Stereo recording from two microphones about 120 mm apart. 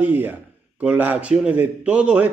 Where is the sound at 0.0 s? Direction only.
15° right (ahead or behind).